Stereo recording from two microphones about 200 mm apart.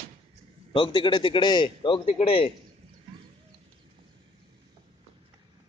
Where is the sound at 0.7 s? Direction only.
25° left (ahead or behind).